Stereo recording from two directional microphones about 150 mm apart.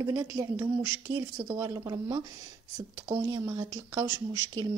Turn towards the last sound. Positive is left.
turn(degrees=-25)  # may be behind; listen again after turning